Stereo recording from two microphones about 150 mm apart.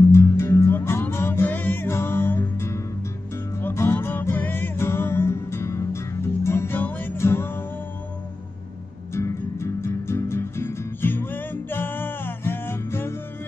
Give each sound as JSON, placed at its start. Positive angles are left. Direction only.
{"t": 0.1, "sound": "music", "side_deg": 20}
{"t": 9.1, "sound": "music", "side_deg": 20}